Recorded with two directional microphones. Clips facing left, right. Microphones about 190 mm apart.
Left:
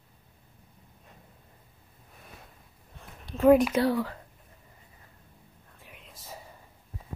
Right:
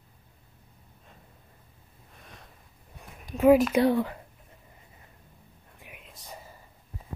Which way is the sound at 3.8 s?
20° right (ahead or behind).